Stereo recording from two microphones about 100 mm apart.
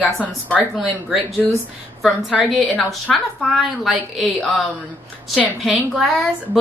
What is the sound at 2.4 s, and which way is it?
A woman's voice, 10° left (ahead or behind).